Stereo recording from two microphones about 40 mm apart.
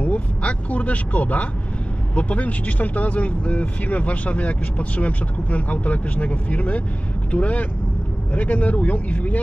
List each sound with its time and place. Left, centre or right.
0.0 s speech: left